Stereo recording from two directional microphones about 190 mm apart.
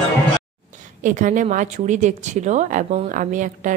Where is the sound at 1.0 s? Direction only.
40° right (ahead or behind).